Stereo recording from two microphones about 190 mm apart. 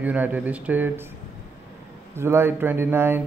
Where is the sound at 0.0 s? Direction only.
10° right (ahead or behind).